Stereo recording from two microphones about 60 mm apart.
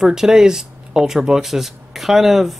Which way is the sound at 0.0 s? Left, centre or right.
Centre.